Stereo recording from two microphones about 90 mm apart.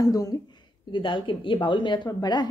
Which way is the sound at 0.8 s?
65° left (ahead or behind).